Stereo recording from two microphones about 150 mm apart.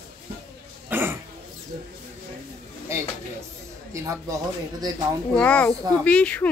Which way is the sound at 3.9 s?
20° right (ahead or behind).